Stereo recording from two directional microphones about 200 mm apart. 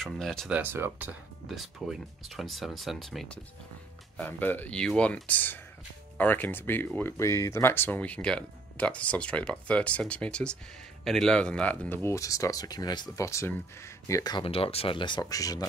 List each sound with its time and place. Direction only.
0.0 s speech: centre (ahead or behind)
0.6 s speech: 10° right (ahead or behind); by 15.6 s 15° left (ahead or behind)